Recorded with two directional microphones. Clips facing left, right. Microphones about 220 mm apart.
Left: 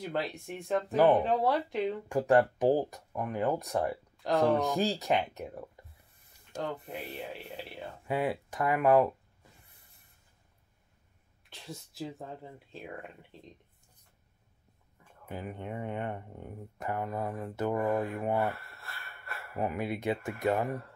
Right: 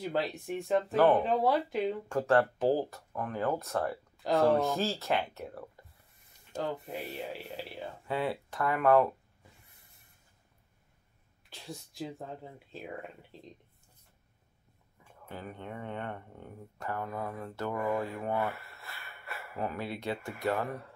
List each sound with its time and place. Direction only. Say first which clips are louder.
0.1 s speech: right 2 dB; centre (ahead or behind)
2.0 s speech: left 3 dB; 15° left (ahead or behind)
4.2 s speech: even; centre (ahead or behind)
4.7 s speech: left 2 dB; 15° left (ahead or behind)
6.5 s speech: right 1 dB; centre (ahead or behind)
8.1 s speech: left 2 dB; 15° left (ahead or behind)
11.5 s speech: right 1 dB; centre (ahead or behind)
15.2 s speech: left 3 dB; 15° left (ahead or behind)
18.5 s a sound: left 2 dB; 5° right (ahead or behind)
19.5 s speech: left 3 dB; 15° left (ahead or behind)
20.2 s speech: left 4 dB; centre (ahead or behind)